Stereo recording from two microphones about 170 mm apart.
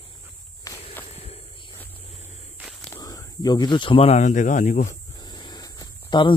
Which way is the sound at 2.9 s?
20° left (ahead or behind).